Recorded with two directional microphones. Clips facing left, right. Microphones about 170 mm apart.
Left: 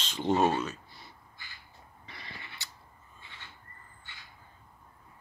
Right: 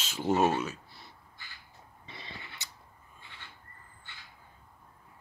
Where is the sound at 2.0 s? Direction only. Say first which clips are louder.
Right 1 dB; 25° right (ahead or behind).